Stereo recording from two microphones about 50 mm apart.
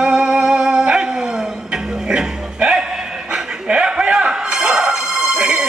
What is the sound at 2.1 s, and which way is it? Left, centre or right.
Music, centre.